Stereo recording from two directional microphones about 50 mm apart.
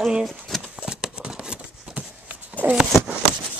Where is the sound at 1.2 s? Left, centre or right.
Centre.